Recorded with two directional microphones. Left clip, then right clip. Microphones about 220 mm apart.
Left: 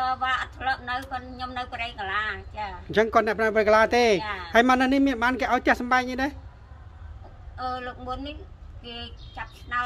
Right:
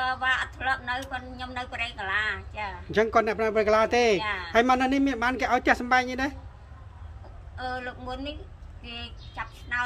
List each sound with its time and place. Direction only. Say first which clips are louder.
0.0 s a sound: even; centre (ahead or behind)
1.1 s a woman's voice: left 2 dB; centre (ahead or behind)
2.9 s speech: left 2 dB; 20° left (ahead or behind)
4.2 s a woman's voice: right 2 dB; centre (ahead or behind)
4.5 s a woman's voice: left 3 dB; 20° left (ahead or behind)
7.5 s a woman's voice: left 2 dB; centre (ahead or behind)